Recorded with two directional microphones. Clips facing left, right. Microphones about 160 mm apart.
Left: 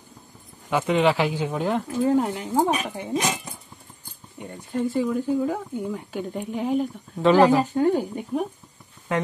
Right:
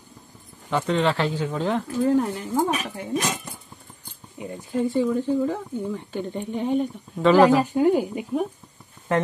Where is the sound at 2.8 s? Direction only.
15° left (ahead or behind).